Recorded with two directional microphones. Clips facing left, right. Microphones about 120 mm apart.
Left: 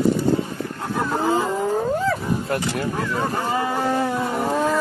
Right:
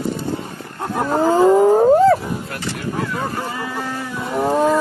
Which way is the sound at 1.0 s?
40° right (ahead or behind).